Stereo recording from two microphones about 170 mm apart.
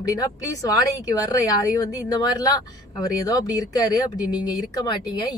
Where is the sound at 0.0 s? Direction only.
20° left (ahead or behind).